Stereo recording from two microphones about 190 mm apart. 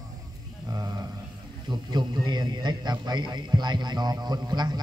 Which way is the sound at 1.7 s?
20° right (ahead or behind).